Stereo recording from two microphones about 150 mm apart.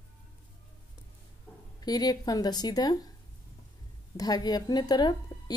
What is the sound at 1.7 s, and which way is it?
A woman's voice, 25° left (ahead or behind).